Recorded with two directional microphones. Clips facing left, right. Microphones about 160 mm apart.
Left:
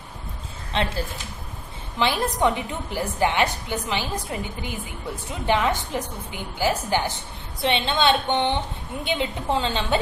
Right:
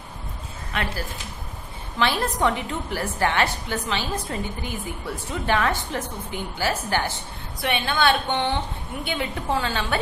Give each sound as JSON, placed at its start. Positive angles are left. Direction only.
{"t": 0.7, "sound": "a woman's voice", "side_deg": 25}
{"t": 2.0, "sound": "a woman's voice", "side_deg": 20}